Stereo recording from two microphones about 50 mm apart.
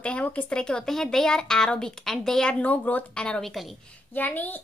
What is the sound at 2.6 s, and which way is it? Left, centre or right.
Speech, left.